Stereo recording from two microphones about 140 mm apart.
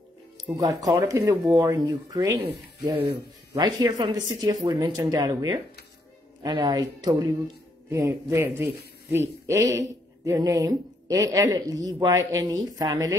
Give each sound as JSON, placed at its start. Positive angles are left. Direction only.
{"t": 0.4, "sound": "a man's voice", "side_deg": -25}